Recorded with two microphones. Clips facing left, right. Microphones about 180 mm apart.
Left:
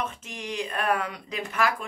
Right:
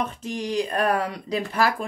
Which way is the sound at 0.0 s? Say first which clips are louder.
Right 6 dB; 35° right (ahead or behind).